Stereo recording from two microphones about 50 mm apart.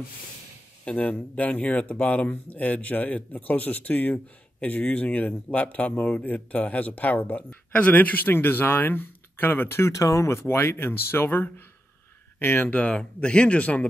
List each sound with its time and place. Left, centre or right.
0.8 s speech: left
12.6 s speech: left
12.9 s speech: left